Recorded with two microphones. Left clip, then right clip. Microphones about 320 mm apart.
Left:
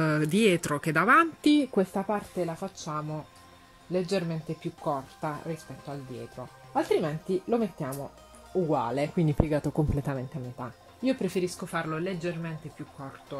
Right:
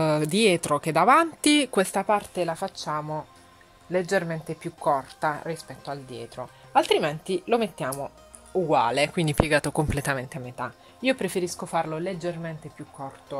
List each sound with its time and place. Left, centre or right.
0.0 s speech: centre
1.7 s speech: right
6.4 s speech: right; by 12.5 s centre